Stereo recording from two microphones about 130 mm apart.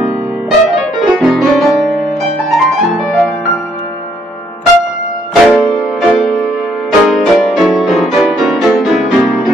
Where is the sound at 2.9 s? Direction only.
Centre (ahead or behind).